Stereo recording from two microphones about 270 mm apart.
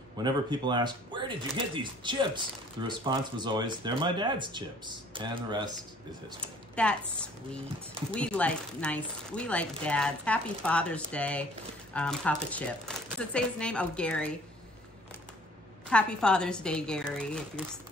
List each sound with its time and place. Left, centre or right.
0.2 s speech: centre
6.4 s speech: centre
8.1 s speech: centre
15.9 s speech: centre